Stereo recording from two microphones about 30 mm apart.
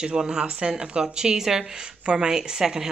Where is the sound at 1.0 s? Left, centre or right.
Right.